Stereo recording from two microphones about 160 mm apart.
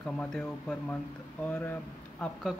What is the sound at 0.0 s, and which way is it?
Speech, 5° left (ahead or behind).